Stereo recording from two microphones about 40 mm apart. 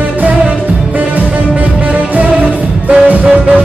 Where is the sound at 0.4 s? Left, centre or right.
Right.